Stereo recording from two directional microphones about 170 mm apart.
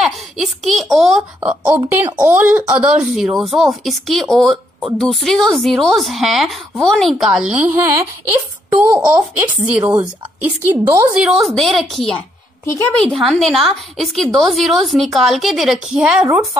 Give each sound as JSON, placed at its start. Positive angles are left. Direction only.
{"t": 0.0, "sound": "a woman's voice", "side_deg": 0}
{"t": 11.1, "sound": "a woman's voice", "side_deg": 0}
{"t": 12.6, "sound": "a woman's voice", "side_deg": 15}
{"t": 13.1, "sound": "a woman's voice", "side_deg": 0}